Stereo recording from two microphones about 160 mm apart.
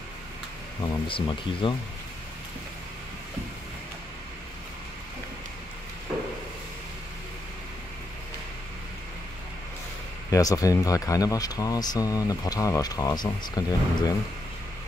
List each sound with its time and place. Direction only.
1.0 s speech: 35° left (ahead or behind)
10.3 s speech: 20° left (ahead or behind)